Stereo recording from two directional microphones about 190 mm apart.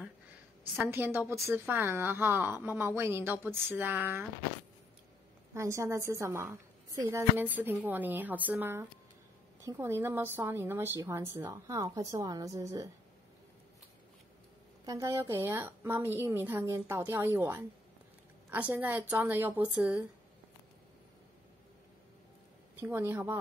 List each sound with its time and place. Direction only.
0.7 s a woman's voice: 10° right (ahead or behind)
5.5 s a woman's voice: 15° right (ahead or behind)
14.9 s a woman's voice: 15° right (ahead or behind)
22.8 s a woman's voice: 10° right (ahead or behind)